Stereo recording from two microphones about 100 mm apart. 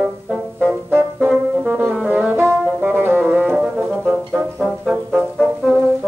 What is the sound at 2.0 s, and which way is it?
Brass instrument, 15° right (ahead or behind).